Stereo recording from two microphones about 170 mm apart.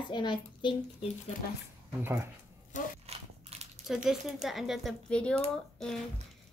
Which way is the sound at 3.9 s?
Centre (ahead or behind).